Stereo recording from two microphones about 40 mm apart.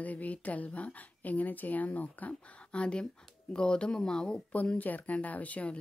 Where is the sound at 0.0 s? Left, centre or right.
Left.